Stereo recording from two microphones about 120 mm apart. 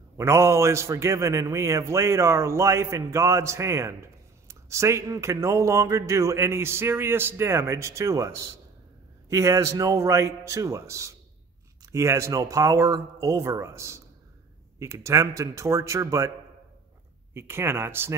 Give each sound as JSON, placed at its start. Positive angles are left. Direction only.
{"t": 0.2, "sound": "a man's voice", "side_deg": -25}
{"t": 17.3, "sound": "a man's voice", "side_deg": -20}